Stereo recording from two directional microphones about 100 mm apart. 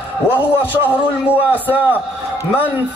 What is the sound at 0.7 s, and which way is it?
A man's voice, 15° right (ahead or behind).